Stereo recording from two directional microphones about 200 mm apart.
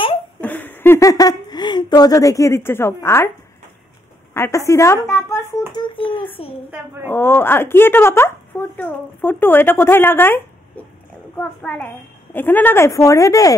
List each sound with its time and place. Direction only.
0.4 s speech: 10° left (ahead or behind)
4.3 s speech: 15° left (ahead or behind)
7.1 s speech: 10° left (ahead or behind)